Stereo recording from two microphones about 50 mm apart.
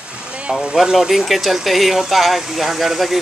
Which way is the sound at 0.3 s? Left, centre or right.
Centre.